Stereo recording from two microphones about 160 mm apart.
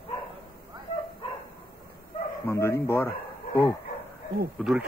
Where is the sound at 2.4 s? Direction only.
15° left (ahead or behind).